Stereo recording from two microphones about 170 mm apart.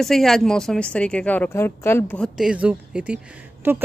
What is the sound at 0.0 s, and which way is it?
Speech, centre (ahead or behind).